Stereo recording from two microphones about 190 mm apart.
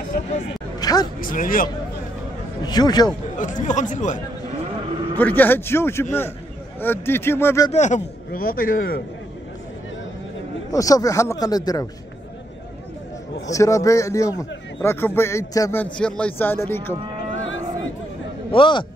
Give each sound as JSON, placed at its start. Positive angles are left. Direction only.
{"t": 0.1, "sound": "speech", "side_deg": 50}
{"t": 0.7, "sound": "music", "side_deg": 20}
{"t": 1.2, "sound": "speech", "side_deg": 45}
{"t": 2.6, "sound": "a man's voice", "side_deg": 20}
{"t": 3.3, "sound": "speech", "side_deg": 40}
{"t": 5.1, "sound": "a man's voice", "side_deg": 10}
{"t": 7.7, "sound": "speech", "side_deg": 40}
{"t": 10.7, "sound": "a man's voice", "side_deg": 20}
{"t": 13.5, "sound": "a man's voice", "side_deg": 15}
{"t": 17.4, "sound": "a sound", "side_deg": 90}
{"t": 18.5, "sound": "a man's voice", "side_deg": 25}